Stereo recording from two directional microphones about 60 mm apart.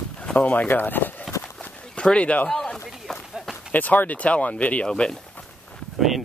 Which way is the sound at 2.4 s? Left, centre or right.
Centre.